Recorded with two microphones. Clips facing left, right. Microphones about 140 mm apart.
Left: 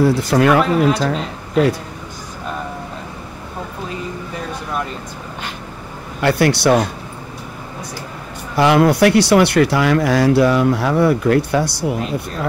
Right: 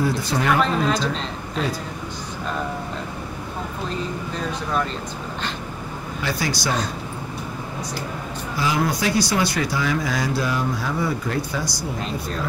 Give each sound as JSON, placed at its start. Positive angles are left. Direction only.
{"t": 0.0, "sound": "speech", "side_deg": 65}
{"t": 6.2, "sound": "speech", "side_deg": 65}
{"t": 8.5, "sound": "speech", "side_deg": 65}